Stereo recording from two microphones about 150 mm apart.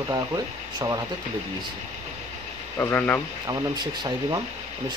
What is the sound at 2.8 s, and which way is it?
Speech, 10° left (ahead or behind).